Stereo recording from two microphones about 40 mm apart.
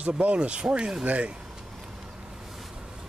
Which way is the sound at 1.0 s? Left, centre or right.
Right.